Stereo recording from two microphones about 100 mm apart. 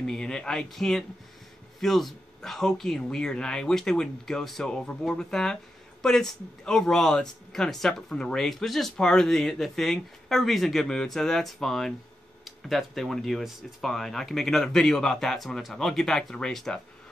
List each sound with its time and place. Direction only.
0.0 s speech: 5° left (ahead or behind)